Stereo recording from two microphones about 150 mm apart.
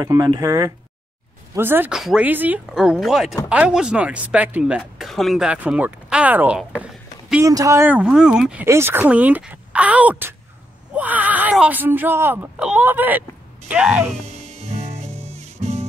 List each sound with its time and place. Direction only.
0.0 s speech: 25° right (ahead or behind); by 7.4 s 5° right (ahead or behind)
7.4 s speech: 20° right (ahead or behind); by 8.6 s 5° right (ahead or behind)
8.6 s speech: 15° right (ahead or behind)
14.2 s music: 45° right (ahead or behind)